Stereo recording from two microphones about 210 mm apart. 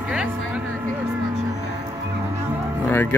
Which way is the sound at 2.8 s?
10° left (ahead or behind).